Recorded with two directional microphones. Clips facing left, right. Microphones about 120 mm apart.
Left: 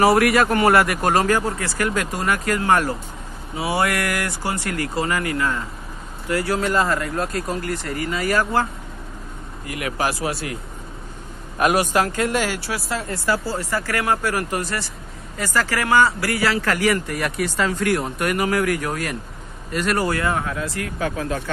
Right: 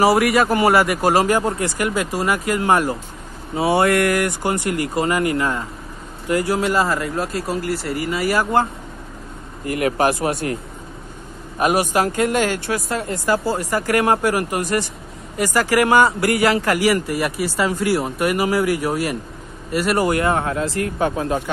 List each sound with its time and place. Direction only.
0.0 s speech: centre (ahead or behind)
1.2 s speech: 15° right (ahead or behind)
3.5 s speech: 30° right (ahead or behind); by 8.5 s 10° right (ahead or behind)
9.7 s speech: 40° right (ahead or behind)
11.7 s speech: 15° right (ahead or behind)
12.3 s speech: 50° right (ahead or behind)
13.1 s speech: 20° right (ahead or behind)